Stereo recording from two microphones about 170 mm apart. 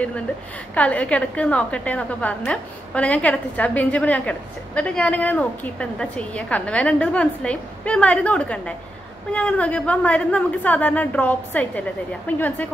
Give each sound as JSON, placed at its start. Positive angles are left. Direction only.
{"t": 0.7, "sound": "a woman's voice", "side_deg": 5}